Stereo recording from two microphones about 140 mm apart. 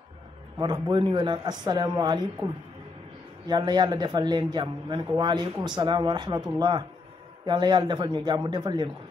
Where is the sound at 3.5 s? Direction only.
30° right (ahead or behind).